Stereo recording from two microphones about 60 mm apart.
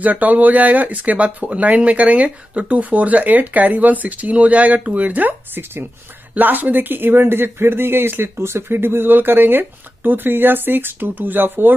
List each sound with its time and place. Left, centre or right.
0.0 s speech: right